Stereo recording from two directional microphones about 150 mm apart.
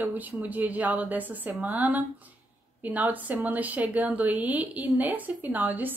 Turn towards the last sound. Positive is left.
turn(degrees=-10)  # may be behind; listen again after turning